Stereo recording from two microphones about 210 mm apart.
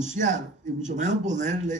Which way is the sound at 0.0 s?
35° right (ahead or behind).